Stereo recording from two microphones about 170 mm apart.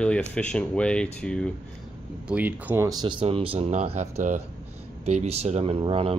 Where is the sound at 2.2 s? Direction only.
10° right (ahead or behind).